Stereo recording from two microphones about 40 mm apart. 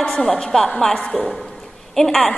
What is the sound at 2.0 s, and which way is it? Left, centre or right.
Speech, centre.